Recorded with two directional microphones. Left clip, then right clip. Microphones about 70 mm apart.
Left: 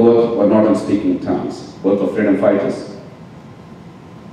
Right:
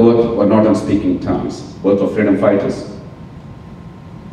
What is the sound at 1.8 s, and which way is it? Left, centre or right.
Speech, centre.